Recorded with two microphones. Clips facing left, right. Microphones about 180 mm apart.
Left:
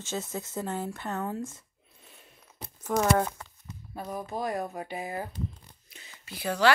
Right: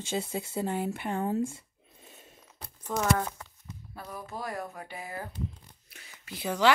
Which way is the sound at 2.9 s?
20° left (ahead or behind).